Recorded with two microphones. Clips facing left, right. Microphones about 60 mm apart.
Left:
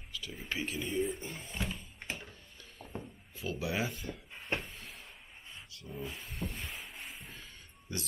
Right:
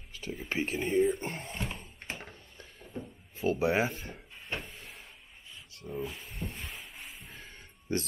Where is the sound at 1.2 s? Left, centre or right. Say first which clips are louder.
Right 3 dB; right.